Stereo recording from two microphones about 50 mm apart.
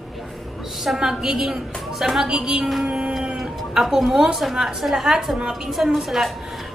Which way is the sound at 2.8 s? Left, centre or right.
Centre.